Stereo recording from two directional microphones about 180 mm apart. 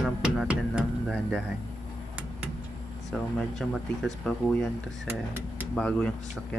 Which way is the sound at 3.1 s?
Centre (ahead or behind).